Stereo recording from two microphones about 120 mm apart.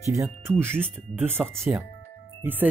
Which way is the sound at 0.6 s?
20° right (ahead or behind).